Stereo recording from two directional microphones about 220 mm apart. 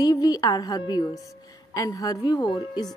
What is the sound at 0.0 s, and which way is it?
A woman's voice, 15° left (ahead or behind).